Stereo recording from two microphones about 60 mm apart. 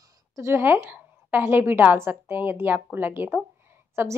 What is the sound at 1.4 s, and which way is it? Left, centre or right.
A woman's voice, right.